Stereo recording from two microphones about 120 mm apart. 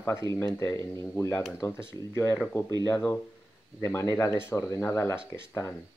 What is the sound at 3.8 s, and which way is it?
Speech, 20° left (ahead or behind).